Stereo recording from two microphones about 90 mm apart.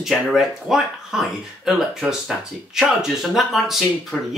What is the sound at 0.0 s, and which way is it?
Speech, centre (ahead or behind).